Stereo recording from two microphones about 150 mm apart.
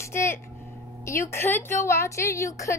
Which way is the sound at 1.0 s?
15° left (ahead or behind).